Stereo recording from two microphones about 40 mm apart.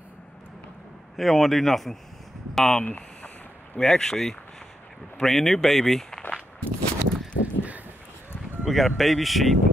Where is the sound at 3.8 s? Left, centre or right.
Centre.